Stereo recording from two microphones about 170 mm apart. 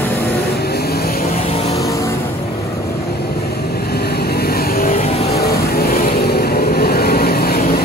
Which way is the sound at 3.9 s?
70° left (ahead or behind).